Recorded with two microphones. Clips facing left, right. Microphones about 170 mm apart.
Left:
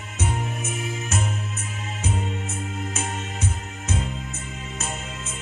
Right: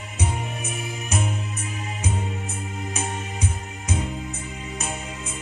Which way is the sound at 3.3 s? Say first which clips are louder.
Even; 15° right (ahead or behind).